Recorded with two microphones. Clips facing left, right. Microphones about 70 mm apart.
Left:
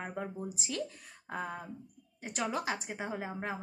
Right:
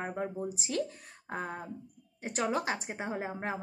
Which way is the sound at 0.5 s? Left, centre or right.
Right.